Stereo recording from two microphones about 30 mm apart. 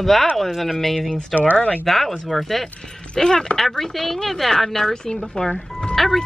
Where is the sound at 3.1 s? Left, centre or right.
Left.